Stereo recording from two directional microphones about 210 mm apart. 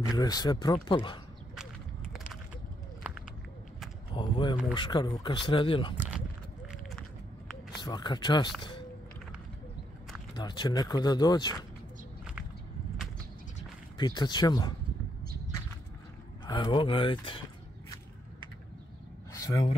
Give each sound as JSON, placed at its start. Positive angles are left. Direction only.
{"t": 0.1, "sound": "speech", "side_deg": 20}
{"t": 3.1, "sound": "a sound", "side_deg": -5}
{"t": 4.1, "sound": "a sound", "side_deg": 20}
{"t": 4.7, "sound": "speech", "side_deg": 20}
{"t": 5.9, "sound": "speech", "side_deg": -5}
{"t": 7.8, "sound": "speech", "side_deg": 20}
{"t": 10.3, "sound": "speech", "side_deg": 20}
{"t": 13.9, "sound": "speech", "side_deg": 20}
{"t": 16.4, "sound": "speech", "side_deg": 20}
{"t": 19.3, "sound": "a sound", "side_deg": 15}